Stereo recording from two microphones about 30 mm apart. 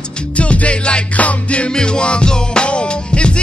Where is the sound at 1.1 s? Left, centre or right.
Left.